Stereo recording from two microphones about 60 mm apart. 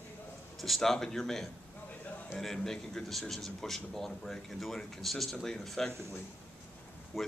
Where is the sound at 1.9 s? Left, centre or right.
Left.